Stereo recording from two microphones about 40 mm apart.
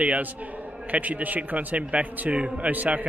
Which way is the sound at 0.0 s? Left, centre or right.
Right.